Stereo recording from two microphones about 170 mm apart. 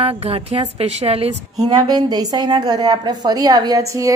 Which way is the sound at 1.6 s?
25° right (ahead or behind).